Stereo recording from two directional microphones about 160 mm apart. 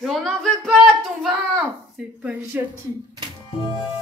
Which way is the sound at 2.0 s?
10° right (ahead or behind).